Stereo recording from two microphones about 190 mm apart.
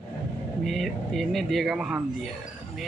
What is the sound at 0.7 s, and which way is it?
Speech, centre (ahead or behind).